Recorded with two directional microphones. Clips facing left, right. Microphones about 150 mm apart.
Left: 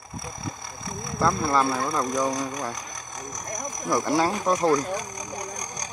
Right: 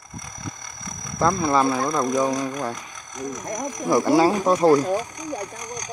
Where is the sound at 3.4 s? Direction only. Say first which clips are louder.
Right 4 dB; 25° right (ahead or behind).